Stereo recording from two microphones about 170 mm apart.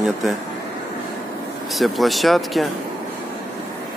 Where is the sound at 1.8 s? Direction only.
Centre (ahead or behind).